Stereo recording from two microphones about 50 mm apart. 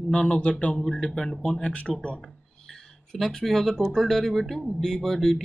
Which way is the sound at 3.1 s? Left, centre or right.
Centre.